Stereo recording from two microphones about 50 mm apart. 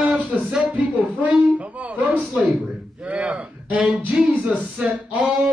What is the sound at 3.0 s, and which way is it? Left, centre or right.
Speech, centre.